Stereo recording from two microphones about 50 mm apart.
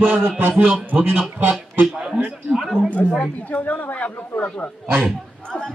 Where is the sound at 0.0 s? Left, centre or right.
Right.